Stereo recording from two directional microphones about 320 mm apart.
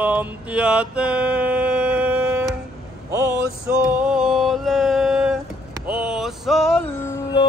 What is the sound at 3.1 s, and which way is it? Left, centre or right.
Vehicle, centre.